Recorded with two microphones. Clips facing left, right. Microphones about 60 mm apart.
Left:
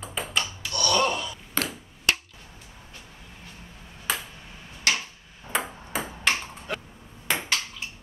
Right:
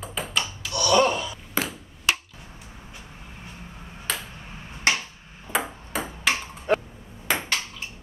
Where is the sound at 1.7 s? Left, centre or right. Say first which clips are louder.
Right 1 dB; centre.